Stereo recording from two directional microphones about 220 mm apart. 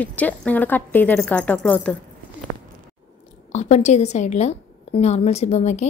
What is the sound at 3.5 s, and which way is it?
A woman's voice, 30° left (ahead or behind).